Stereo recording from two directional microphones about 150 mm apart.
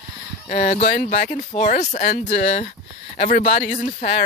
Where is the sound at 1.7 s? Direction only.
55° left (ahead or behind).